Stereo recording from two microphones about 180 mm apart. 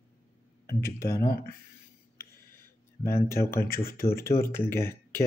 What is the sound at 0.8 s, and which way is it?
Speech, 15° left (ahead or behind).